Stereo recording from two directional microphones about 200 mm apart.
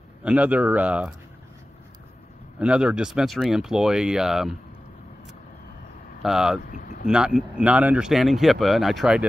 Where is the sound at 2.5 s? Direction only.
5° right (ahead or behind).